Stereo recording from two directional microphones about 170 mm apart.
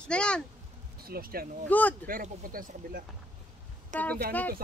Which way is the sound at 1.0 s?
60° right (ahead or behind).